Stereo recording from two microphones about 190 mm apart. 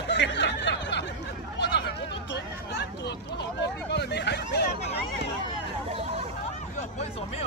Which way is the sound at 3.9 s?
60° left (ahead or behind).